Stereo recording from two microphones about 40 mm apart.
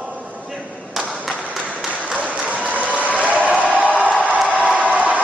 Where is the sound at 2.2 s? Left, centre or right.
Right.